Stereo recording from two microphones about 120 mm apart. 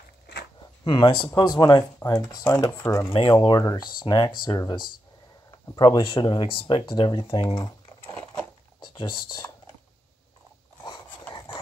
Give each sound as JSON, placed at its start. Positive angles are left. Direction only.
{"t": 0.8, "sound": "speech", "side_deg": 40}
{"t": 3.1, "sound": "speech", "side_deg": 40}
{"t": 8.8, "sound": "speech", "side_deg": 40}
{"t": 11.3, "sound": "a sound", "side_deg": 45}